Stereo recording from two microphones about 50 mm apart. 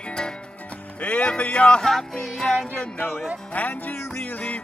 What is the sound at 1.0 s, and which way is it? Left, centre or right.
Speech, left.